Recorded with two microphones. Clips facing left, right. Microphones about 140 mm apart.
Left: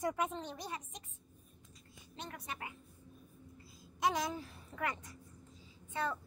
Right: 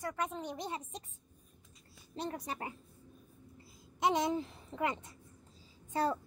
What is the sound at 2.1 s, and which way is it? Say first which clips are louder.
Speech: right 7 dB; 35° right (ahead or behind).